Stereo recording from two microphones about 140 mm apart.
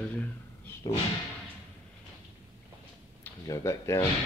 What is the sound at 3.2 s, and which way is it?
Speech, 20° left (ahead or behind).